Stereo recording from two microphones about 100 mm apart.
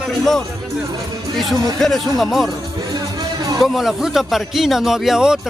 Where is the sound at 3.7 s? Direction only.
5° right (ahead or behind).